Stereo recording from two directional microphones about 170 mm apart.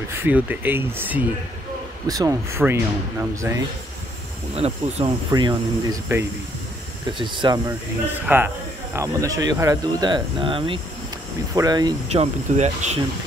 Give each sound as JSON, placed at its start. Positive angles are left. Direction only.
{"t": 0.1, "sound": "speech", "side_deg": -10}
{"t": 4.6, "sound": "speech", "side_deg": -35}
{"t": 5.3, "sound": "speech", "side_deg": -25}
{"t": 7.2, "sound": "speech", "side_deg": -30}
{"t": 8.1, "sound": "speech", "side_deg": -10}
{"t": 12.1, "sound": "speech", "side_deg": -40}